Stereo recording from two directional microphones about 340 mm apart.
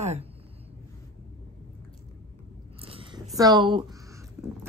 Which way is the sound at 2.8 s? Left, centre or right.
Centre.